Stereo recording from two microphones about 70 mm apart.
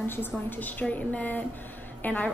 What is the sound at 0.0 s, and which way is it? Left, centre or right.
A woman's voice, left.